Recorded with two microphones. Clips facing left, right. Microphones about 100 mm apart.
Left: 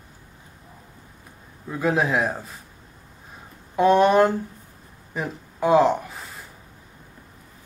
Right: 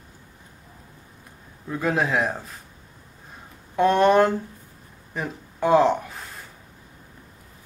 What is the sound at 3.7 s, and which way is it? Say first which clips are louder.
Music: left 1 dB; centre (ahead or behind).